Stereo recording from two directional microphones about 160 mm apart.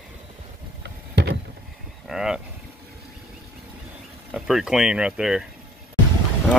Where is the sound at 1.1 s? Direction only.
90° right.